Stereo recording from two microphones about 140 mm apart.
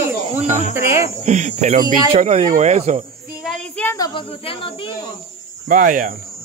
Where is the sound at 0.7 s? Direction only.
20° right (ahead or behind).